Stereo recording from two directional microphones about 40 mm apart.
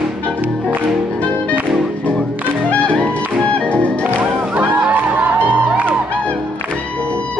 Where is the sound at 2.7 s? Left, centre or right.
Left.